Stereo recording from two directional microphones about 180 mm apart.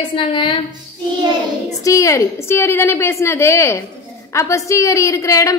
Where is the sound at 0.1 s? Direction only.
25° left (ahead or behind).